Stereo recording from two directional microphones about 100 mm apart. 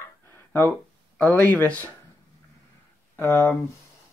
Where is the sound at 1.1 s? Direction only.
15° left (ahead or behind).